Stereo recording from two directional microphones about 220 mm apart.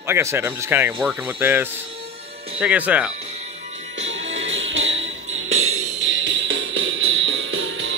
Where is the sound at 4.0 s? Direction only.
60° right (ahead or behind).